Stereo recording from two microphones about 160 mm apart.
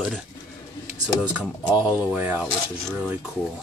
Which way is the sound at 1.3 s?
10° right (ahead or behind).